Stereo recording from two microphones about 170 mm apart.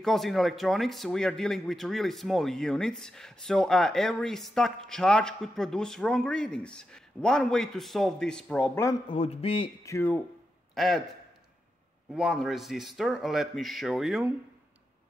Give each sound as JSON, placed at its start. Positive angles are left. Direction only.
{"t": 0.0, "sound": "speech", "side_deg": 0}
{"t": 9.0, "sound": "a man's voice", "side_deg": 35}
{"t": 9.8, "sound": "speech", "side_deg": 15}
{"t": 10.7, "sound": "a sound", "side_deg": 0}
{"t": 12.2, "sound": "speech", "side_deg": 0}